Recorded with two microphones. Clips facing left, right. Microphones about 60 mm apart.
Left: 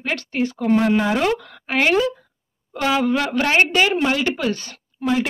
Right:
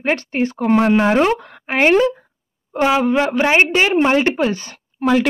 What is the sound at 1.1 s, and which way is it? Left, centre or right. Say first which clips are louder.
Speech: right 4 dB; right.